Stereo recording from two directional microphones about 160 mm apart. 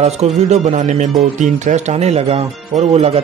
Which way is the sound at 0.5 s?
45° right (ahead or behind).